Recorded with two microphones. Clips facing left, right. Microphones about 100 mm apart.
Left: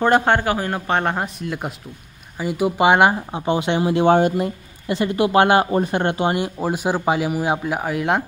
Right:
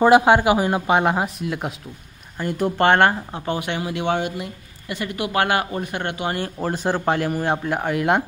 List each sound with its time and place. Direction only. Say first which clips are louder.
0.0 s speech: right 3 dB; 10° right (ahead or behind); by 6.3 s 30° left (ahead or behind)
6.3 s a man's voice: left 3 dB; 10° left (ahead or behind)